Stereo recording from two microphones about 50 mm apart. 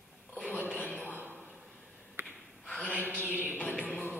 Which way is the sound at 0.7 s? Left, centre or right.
Left.